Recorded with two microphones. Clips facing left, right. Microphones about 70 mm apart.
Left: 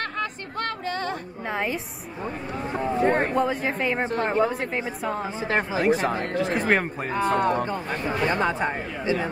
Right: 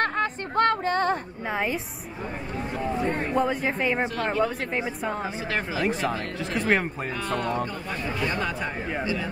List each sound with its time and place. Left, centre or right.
0.0 s a sound: right
1.5 s speech: centre
2.7 s speech: left
3.1 s speech: left
3.3 s speech: centre
5.4 s speech: left
6.7 s speech: centre
7.1 s speech: left